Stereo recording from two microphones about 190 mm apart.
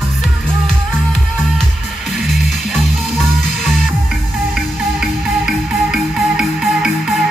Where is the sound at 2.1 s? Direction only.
Centre (ahead or behind).